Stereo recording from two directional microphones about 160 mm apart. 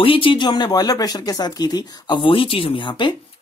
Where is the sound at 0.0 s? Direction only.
35° left (ahead or behind).